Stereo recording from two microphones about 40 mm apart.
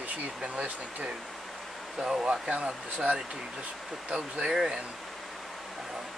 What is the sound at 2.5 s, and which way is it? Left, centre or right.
Speech, right.